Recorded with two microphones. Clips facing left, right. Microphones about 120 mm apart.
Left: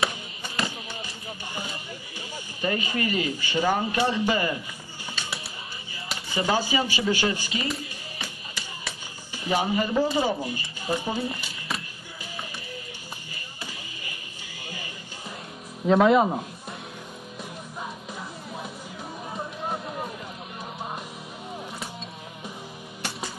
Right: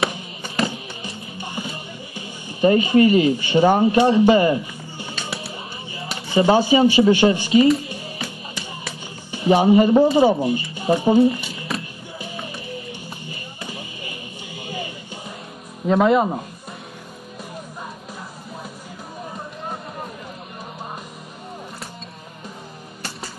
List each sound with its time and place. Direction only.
0.7 s music: 25° right (ahead or behind)
2.1 s speech: 25° right (ahead or behind)
6.3 s speech: 25° right (ahead or behind)
9.3 s speech: 25° right (ahead or behind)
15.9 s speech: centre (ahead or behind)